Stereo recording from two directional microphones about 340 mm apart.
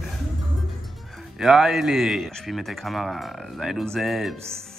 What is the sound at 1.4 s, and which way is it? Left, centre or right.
A man's voice, centre.